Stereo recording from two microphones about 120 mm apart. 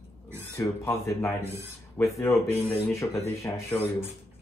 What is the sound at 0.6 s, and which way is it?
Speech, 25° left (ahead or behind).